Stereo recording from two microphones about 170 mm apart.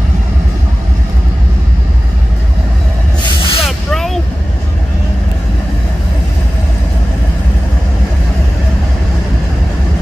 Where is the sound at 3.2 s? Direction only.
25° left (ahead or behind).